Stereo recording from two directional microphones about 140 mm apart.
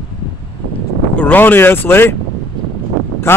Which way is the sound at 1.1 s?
10° left (ahead or behind).